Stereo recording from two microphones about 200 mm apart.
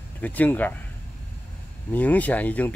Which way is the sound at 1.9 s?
10° left (ahead or behind).